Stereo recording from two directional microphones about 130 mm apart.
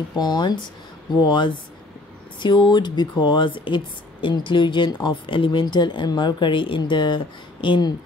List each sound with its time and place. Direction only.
0.1 s speech: 30° left (ahead or behind)